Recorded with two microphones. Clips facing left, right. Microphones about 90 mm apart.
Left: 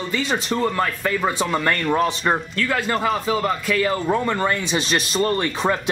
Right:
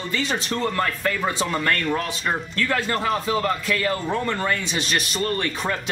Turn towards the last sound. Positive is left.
turn(degrees=20)  # may be behind; listen again after turning